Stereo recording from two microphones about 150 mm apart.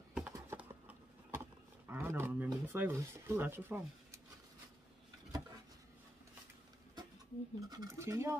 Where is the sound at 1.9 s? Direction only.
15° right (ahead or behind).